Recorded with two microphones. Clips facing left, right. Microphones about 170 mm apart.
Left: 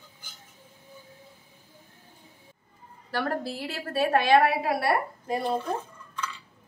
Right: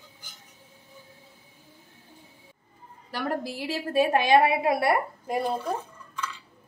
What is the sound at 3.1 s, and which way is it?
A woman's voice, 15° right (ahead or behind).